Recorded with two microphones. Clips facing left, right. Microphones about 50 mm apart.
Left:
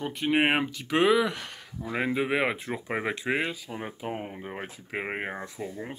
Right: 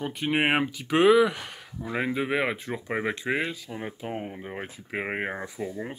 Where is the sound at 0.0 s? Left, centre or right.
Centre.